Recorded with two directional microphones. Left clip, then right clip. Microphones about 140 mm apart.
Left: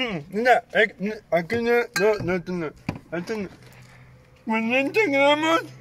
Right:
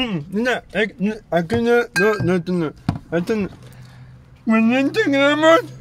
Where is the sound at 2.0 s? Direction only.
35° right (ahead or behind).